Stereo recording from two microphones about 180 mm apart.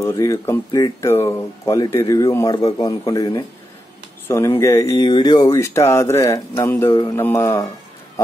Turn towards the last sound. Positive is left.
turn(degrees=15)  # may be behind; listen again after turning